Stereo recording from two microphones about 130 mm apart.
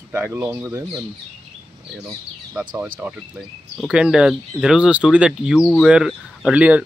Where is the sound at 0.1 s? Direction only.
15° right (ahead or behind).